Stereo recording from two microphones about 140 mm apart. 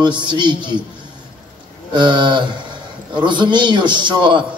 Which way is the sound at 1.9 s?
35° right (ahead or behind).